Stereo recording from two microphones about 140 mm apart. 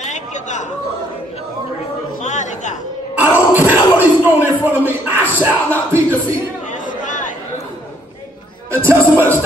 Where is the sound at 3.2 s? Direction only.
15° right (ahead or behind).